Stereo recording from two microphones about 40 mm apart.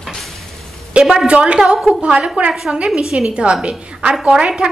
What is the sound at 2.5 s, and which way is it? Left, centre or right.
Speech, centre.